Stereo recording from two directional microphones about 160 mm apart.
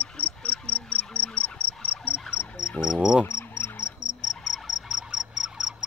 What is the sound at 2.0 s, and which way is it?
Cricket, 5° right (ahead or behind).